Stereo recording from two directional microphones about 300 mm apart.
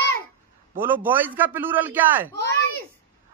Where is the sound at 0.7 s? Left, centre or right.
Centre.